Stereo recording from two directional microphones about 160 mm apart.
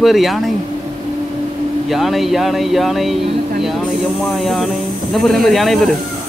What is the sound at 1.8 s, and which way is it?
Speech, centre (ahead or behind).